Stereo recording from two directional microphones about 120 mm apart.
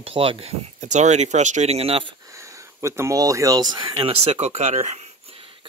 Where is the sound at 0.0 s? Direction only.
50° right (ahead or behind).